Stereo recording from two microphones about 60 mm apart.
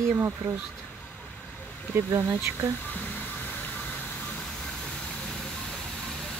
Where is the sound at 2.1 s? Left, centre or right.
Right.